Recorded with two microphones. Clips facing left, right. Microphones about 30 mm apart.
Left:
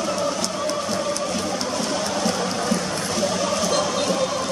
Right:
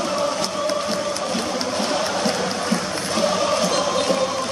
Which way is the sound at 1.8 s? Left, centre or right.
Right.